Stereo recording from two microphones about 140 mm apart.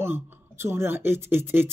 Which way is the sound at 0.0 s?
15° right (ahead or behind).